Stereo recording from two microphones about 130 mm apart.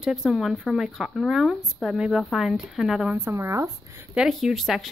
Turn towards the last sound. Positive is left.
turn(degrees=0)  # may be behind; listen again after turning